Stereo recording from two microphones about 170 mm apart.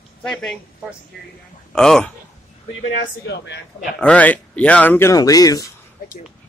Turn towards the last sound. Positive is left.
turn(degrees=20)  # may be behind; listen again after turning